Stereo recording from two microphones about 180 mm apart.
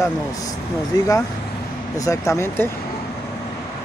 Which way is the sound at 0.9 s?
20° left (ahead or behind).